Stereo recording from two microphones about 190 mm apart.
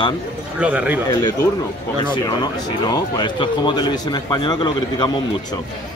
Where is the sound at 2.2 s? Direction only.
20° left (ahead or behind).